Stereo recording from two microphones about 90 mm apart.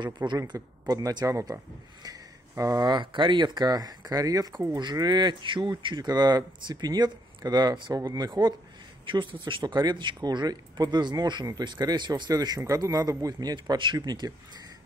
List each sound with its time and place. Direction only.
0.0 s speech: 55° right (ahead or behind); by 2.9 s 35° right (ahead or behind)
2.9 s speech: 60° right (ahead or behind)
6.0 s speech: 50° right (ahead or behind)
9.0 s speech: 65° right (ahead or behind); by 14.3 s 45° right (ahead or behind)